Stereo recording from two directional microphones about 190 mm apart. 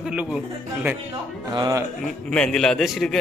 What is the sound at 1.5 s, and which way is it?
Speech, 20° right (ahead or behind).